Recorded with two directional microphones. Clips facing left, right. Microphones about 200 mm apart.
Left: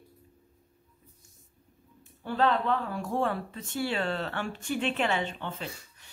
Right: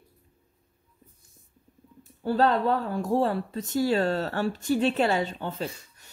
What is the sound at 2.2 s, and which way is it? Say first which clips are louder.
Speech: right 4 dB; 40° right (ahead or behind).